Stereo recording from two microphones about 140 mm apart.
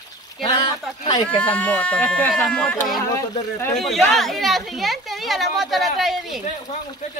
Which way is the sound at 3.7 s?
Centre (ahead or behind).